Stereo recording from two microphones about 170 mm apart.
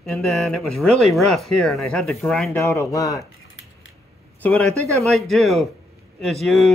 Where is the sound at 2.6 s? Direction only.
15° left (ahead or behind).